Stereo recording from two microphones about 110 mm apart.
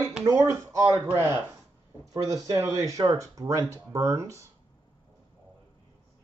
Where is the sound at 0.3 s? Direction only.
25° right (ahead or behind).